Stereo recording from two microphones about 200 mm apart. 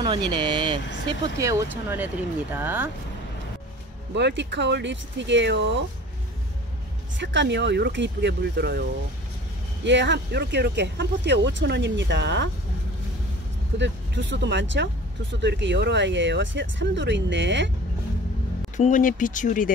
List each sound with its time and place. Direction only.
0.3 s speech: 20° right (ahead or behind)
4.1 s speech: 60° right (ahead or behind)
7.2 s speech: 60° right (ahead or behind)
9.8 s speech: 60° right (ahead or behind)
13.7 s speech: 65° right (ahead or behind)
18.8 s speech: 40° left (ahead or behind)